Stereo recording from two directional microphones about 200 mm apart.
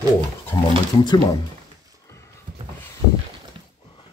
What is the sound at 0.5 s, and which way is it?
Speech, 15° left (ahead or behind).